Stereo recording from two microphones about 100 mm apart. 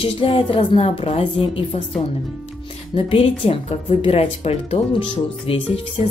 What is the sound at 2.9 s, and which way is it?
Speech, 70° left (ahead or behind).